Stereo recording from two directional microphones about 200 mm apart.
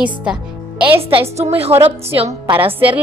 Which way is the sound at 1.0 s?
30° right (ahead or behind).